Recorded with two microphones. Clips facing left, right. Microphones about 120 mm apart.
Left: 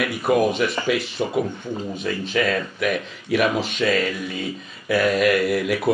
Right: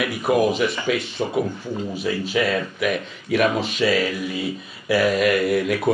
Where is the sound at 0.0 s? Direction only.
Centre (ahead or behind).